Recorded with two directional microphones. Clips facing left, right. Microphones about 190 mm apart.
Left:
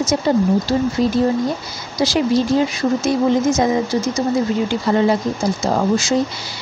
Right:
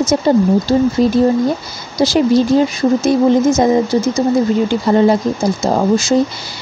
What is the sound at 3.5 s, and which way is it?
Speech, 40° right (ahead or behind).